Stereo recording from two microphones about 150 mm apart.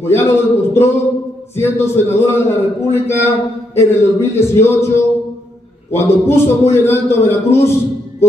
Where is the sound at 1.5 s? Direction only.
15° left (ahead or behind).